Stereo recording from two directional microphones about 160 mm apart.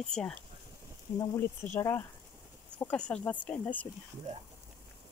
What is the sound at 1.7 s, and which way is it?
Speech, 15° left (ahead or behind).